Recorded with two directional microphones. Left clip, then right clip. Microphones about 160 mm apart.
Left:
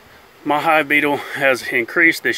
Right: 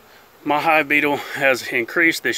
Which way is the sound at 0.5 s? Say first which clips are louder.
Left 1 dB; 5° left (ahead or behind).